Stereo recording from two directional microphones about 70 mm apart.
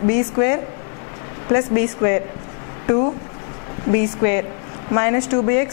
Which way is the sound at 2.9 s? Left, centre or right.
Centre.